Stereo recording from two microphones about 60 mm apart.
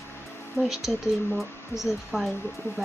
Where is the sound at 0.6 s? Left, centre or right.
Centre.